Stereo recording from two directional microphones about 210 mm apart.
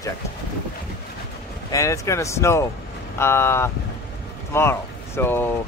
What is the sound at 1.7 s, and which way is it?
Speech, 15° left (ahead or behind).